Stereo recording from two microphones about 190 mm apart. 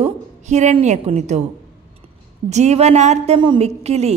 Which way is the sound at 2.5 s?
35° right (ahead or behind).